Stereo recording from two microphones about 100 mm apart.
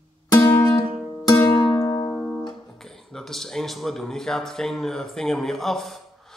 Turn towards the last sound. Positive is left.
turn(degrees=5)  # may be behind; listen again after turning